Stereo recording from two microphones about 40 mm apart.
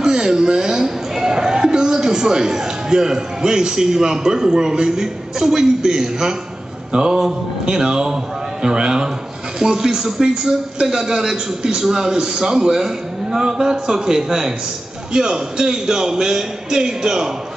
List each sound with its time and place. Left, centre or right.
0.0 s a man's voice: centre